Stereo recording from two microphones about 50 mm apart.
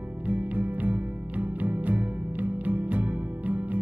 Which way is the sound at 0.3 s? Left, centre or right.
Right.